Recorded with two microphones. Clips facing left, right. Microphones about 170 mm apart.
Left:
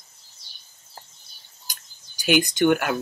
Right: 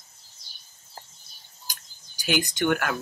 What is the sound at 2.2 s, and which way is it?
Speech, 20° left (ahead or behind).